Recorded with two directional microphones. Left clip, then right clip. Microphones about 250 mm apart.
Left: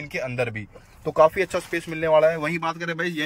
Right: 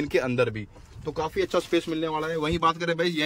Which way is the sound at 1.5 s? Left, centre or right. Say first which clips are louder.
Right 2 dB; centre.